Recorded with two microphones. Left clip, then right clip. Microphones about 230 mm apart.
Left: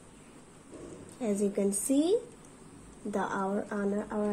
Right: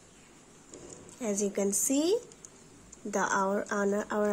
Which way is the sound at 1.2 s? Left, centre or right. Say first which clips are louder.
Left 1 dB; centre.